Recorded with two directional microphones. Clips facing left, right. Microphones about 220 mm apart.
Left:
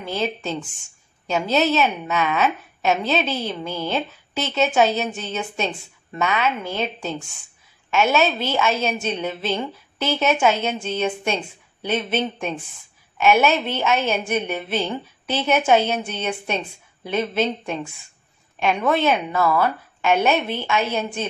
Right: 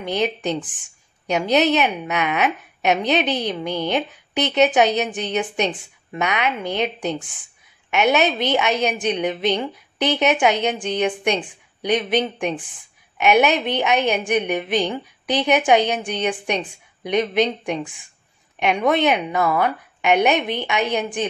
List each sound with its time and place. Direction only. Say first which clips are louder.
0.0 s speech: right 3 dB; 15° right (ahead or behind)